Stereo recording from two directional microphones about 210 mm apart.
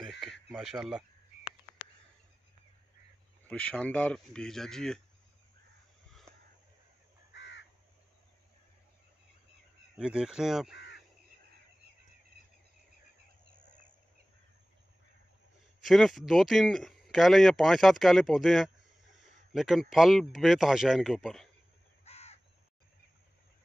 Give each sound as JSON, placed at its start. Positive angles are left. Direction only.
{"t": 0.5, "sound": "a man's voice", "side_deg": 0}
{"t": 3.4, "sound": "a man's voice", "side_deg": 5}
{"t": 7.3, "sound": "crow", "side_deg": 55}
{"t": 9.9, "sound": "a man's voice", "side_deg": -5}
{"t": 10.7, "sound": "crow", "side_deg": 55}
{"t": 12.4, "sound": "cricket", "side_deg": -50}
{"t": 15.8, "sound": "a man's voice", "side_deg": 0}
{"t": 22.0, "sound": "crow", "side_deg": 30}